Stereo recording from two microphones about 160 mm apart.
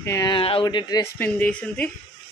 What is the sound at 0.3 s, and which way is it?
Speech, 35° left (ahead or behind).